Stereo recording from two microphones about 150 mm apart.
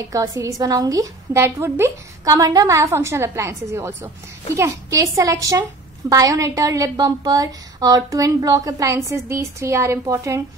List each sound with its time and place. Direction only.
0.0 s a woman's voice: 20° right (ahead or behind)